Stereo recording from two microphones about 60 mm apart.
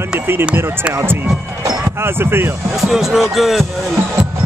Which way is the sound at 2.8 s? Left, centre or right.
Centre.